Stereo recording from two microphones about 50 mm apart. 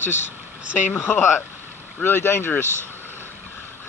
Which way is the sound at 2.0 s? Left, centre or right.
Left.